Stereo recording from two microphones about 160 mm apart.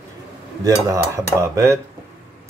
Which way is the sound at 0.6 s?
20° right (ahead or behind).